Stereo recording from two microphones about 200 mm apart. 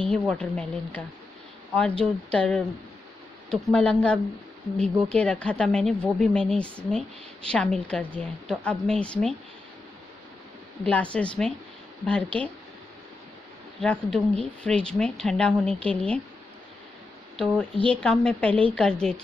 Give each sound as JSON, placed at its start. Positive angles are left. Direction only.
{"t": 0.1, "sound": "a woman's voice", "side_deg": 5}
{"t": 10.9, "sound": "a woman's voice", "side_deg": 5}
{"t": 13.7, "sound": "a woman's voice", "side_deg": 5}
{"t": 17.4, "sound": "a woman's voice", "side_deg": 5}